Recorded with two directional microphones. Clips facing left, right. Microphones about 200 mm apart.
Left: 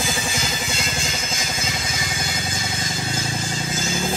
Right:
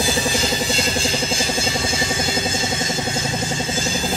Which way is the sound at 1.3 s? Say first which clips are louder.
Right 6 dB; 30° right (ahead or behind).